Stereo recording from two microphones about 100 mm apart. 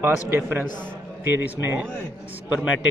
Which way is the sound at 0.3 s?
20° right (ahead or behind).